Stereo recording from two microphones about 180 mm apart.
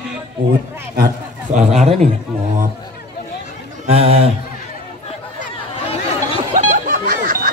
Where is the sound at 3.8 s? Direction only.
35° right (ahead or behind).